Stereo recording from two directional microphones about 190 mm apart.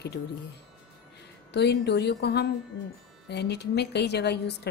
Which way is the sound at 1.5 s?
60° left (ahead or behind).